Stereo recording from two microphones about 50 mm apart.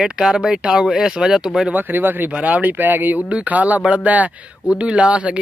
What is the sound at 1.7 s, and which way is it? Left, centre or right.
Speech, right.